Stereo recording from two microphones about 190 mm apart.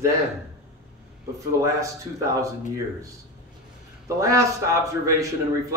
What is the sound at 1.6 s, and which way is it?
Speech, 15° right (ahead or behind).